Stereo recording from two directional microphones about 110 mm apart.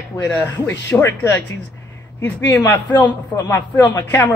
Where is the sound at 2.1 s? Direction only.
20° left (ahead or behind).